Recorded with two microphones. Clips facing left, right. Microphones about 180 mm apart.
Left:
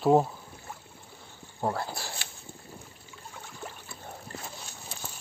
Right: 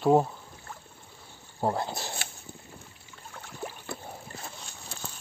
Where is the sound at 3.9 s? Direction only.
65° right (ahead or behind).